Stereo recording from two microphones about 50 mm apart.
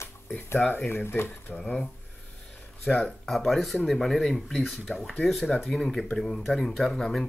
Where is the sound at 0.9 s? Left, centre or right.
Left.